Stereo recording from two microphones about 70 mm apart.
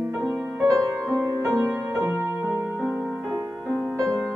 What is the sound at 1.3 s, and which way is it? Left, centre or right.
Music, right.